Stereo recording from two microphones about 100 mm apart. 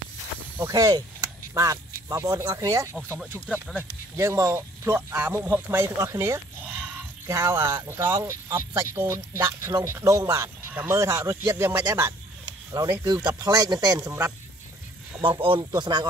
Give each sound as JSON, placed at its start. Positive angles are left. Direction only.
{"t": 0.7, "sound": "speech", "side_deg": -40}
{"t": 4.2, "sound": "speech", "side_deg": -30}
{"t": 6.6, "sound": "a sound", "side_deg": -15}
{"t": 7.2, "sound": "speech", "side_deg": -30}
{"t": 11.9, "sound": "speech", "side_deg": -30}
{"t": 15.2, "sound": "speech", "side_deg": -65}